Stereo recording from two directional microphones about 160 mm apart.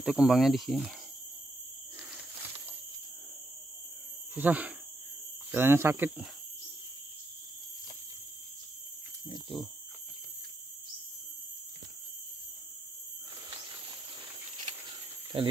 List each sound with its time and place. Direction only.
0.0 s speech: 5° right (ahead or behind)
4.4 s speech: 10° right (ahead or behind)
9.3 s speech: centre (ahead or behind)
13.5 s a sound: 25° right (ahead or behind)